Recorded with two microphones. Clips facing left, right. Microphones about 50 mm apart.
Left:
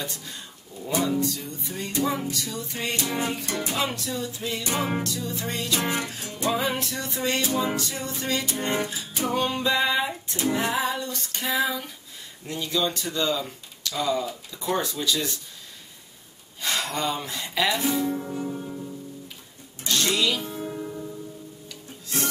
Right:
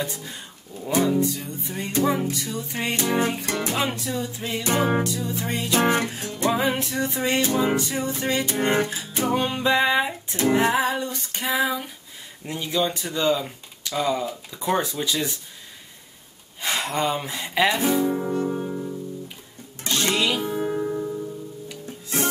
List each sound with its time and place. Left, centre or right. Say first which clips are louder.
0.0 s speech: right 4 dB; centre; by 3.5 s right
3.7 s speech: right 2 dB; centre
5.0 s speech: right 3 dB; centre
5.8 s music: right 9 dB; right
6.5 s speech: right 2 dB; centre
8.5 s music: right 5 dB; right
9.3 s speech: right 3 dB; centre
11.1 s female singing: right 2 dB; centre
12.4 s speech: right 2 dB; centre
16.6 s speech: right 3 dB; right
18.3 s music: right 6 dB; right
20.1 s music: right 5 dB; right